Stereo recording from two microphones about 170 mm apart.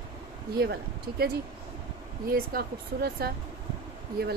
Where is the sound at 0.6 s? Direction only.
70° right (ahead or behind).